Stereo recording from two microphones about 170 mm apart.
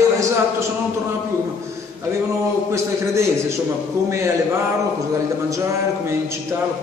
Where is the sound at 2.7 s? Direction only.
15° right (ahead or behind).